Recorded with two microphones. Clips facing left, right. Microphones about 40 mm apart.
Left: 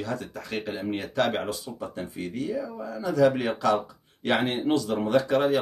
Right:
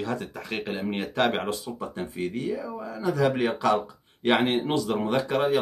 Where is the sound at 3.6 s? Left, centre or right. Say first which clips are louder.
Even; centre.